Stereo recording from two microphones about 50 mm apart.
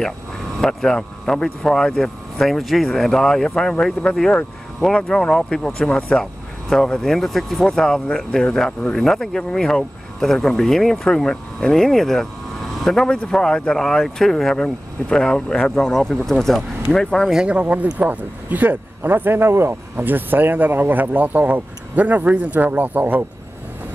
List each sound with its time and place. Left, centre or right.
0.6 s speech: centre
7.7 s speech: centre
17.5 s speech: right